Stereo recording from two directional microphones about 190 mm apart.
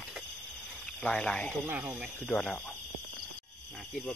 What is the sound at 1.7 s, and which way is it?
Speech, 5° right (ahead or behind).